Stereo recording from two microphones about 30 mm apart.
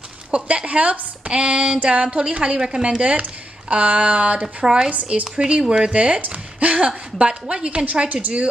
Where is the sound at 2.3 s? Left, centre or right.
Right.